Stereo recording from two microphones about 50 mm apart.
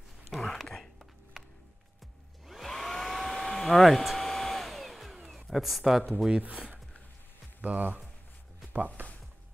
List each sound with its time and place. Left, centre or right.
0.3 s a sound: centre
2.4 s hair dryer: centre
3.8 s speech: centre
4.2 s hair dryer: centre
7.6 s speech: right